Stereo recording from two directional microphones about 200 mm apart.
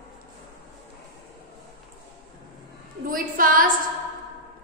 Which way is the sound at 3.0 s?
45° right (ahead or behind).